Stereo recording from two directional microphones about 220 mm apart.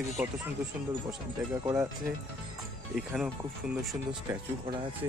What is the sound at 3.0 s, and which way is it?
Speech, centre (ahead or behind).